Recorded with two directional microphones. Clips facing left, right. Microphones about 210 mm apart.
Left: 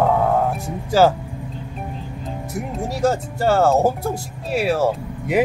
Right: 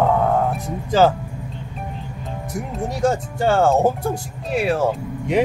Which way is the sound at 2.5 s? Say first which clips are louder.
Even; 5° left (ahead or behind).